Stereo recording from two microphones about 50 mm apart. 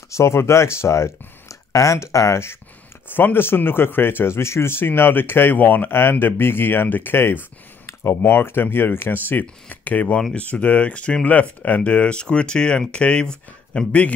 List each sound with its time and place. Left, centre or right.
0.1 s speech: left
3.1 s speech: left